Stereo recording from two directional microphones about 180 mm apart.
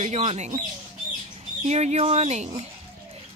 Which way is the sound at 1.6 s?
40° right (ahead or behind).